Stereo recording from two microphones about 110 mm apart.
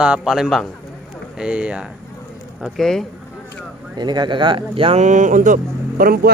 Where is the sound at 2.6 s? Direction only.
Centre (ahead or behind).